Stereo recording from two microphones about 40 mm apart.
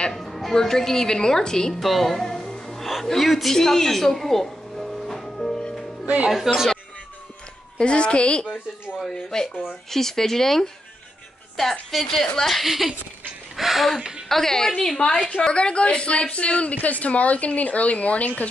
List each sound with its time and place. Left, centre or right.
0.1 s music: centre
0.6 s a woman's voice: centre
1.8 s speech: centre
2.6 s music: centre
2.9 s a sound: centre
6.2 s a woman's voice: centre
7.7 s a woman's voice: left
9.3 s a woman's voice: centre
11.9 s a woman's voice: centre
12.6 s a woman's voice: centre
13.6 s a sound: centre
14.3 s a woman's voice: centre; by 18.5 s left